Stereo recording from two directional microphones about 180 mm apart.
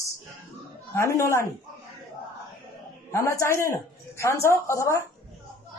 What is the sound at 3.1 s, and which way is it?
A woman's voice, 15° left (ahead or behind).